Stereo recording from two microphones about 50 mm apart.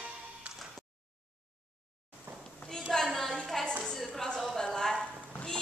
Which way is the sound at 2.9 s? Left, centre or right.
Centre.